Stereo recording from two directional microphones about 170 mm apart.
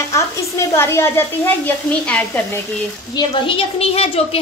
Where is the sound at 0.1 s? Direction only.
15° left (ahead or behind).